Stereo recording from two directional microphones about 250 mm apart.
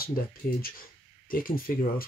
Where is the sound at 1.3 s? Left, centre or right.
Left.